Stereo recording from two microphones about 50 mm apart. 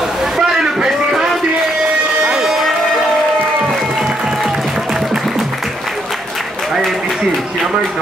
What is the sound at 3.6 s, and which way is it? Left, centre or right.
Music, centre.